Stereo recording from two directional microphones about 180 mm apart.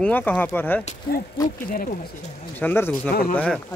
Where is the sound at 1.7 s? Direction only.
50° left (ahead or behind).